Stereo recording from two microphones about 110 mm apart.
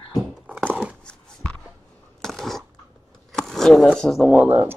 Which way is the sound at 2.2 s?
5° left (ahead or behind).